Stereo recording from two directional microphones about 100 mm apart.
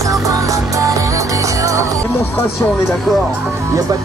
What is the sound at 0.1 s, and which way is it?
Music, 35° right (ahead or behind).